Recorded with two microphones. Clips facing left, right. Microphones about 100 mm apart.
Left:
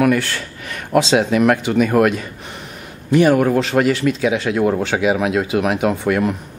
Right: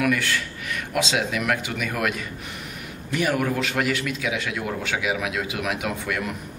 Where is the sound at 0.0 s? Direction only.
35° left (ahead or behind).